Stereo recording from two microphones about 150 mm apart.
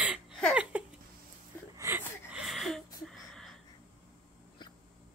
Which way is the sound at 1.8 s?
20° right (ahead or behind).